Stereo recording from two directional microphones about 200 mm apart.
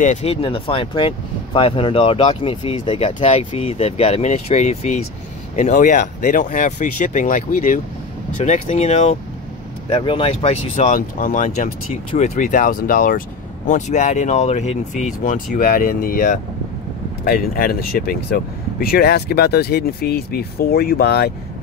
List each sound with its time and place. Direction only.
0.0 s speech: 35° left (ahead or behind); by 21.3 s 55° left (ahead or behind)